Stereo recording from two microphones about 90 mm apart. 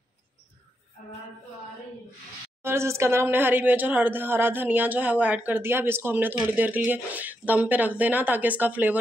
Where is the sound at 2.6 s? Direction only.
30° right (ahead or behind).